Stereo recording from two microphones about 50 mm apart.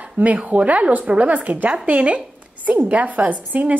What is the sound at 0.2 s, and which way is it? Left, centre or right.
Speech, right.